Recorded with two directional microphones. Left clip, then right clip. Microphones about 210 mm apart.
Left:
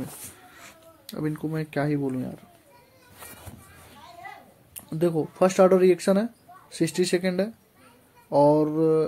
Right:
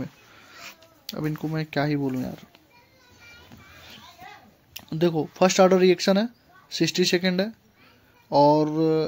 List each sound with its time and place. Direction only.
0.5 s speech: 15° right (ahead or behind); by 2.4 s 35° right (ahead or behind)
4.7 s speech: 30° right (ahead or behind)